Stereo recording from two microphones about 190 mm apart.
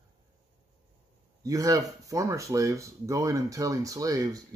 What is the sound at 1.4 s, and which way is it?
Speech, 15° right (ahead or behind).